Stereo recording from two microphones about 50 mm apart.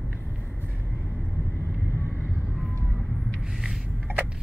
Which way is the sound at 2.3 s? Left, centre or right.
Left.